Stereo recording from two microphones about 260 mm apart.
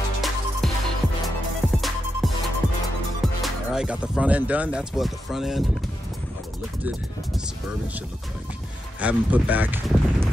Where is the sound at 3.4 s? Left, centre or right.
Centre.